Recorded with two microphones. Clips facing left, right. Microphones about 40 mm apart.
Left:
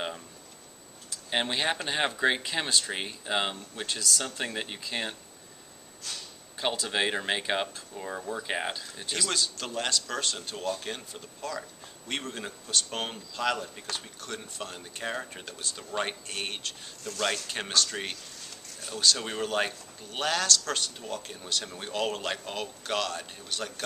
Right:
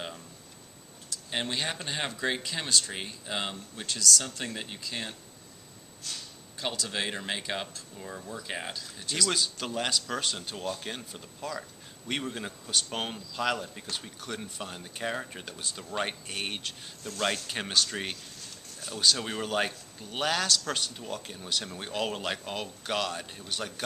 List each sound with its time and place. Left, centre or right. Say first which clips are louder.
1.3 s speech: left 4 dB; left
6.6 s speech: left 4 dB; centre
9.3 s a man's voice: even; centre